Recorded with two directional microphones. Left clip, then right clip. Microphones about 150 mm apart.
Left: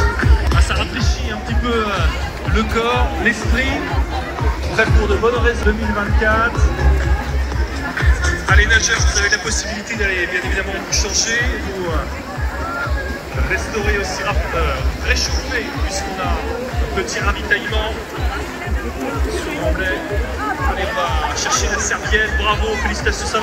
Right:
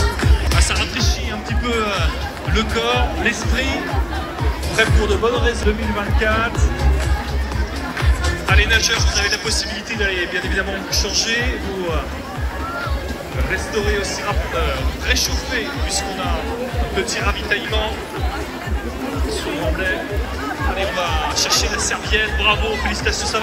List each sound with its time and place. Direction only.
0.0 s music: 10° right (ahead or behind)
2.5 s speech: 15° left (ahead or behind)
4.7 s speech: centre (ahead or behind)
8.0 s speech: 20° right (ahead or behind)
10.0 s a man's voice: 50° right (ahead or behind); by 11.4 s 30° right (ahead or behind)
14.6 s speech: centre (ahead or behind)
21.0 s speech: 5° right (ahead or behind)